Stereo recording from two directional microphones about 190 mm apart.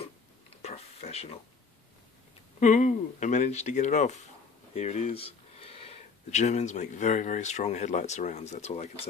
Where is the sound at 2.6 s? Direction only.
40° left (ahead or behind).